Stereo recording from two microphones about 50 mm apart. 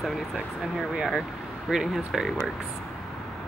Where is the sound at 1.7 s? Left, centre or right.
Centre.